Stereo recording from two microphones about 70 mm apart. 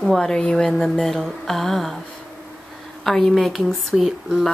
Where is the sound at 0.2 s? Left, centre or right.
Centre.